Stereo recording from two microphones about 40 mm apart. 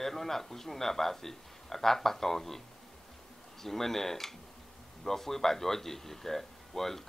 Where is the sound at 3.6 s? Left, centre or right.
Centre.